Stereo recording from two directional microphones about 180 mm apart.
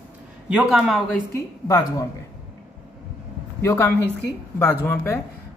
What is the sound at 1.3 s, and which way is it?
Speech, 20° left (ahead or behind).